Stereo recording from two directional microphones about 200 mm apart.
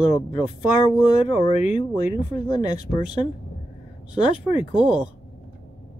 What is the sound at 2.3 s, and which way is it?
Speech, 20° left (ahead or behind).